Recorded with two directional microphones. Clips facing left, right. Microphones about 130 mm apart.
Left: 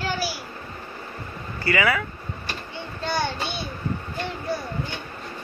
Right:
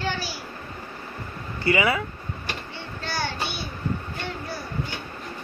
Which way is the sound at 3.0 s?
20° left (ahead or behind).